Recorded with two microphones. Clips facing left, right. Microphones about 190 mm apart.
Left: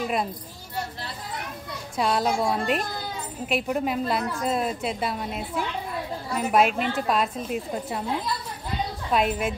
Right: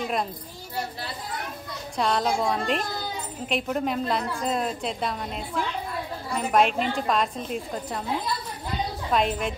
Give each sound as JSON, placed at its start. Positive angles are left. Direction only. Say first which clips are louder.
{"t": 2.0, "sound": "a woman's voice", "louder": "left 1 dB", "side_deg": 5}
{"t": 9.1, "sound": "a woman's voice", "louder": "left 1 dB", "side_deg": 5}